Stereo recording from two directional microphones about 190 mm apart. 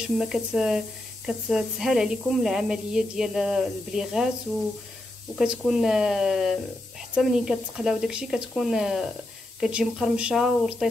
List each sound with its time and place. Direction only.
0.0 s speech: 5° right (ahead or behind)
5.4 s speech: 5° right (ahead or behind)